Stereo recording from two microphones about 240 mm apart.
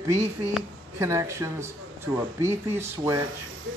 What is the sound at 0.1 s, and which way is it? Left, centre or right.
Speech, centre.